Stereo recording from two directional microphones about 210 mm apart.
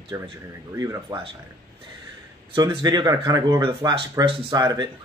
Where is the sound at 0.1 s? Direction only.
15° right (ahead or behind).